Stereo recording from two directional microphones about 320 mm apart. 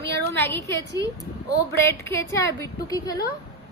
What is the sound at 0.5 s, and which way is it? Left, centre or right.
A woman's voice, centre.